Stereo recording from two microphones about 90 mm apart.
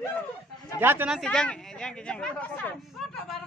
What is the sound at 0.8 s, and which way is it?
Speech, 25° right (ahead or behind).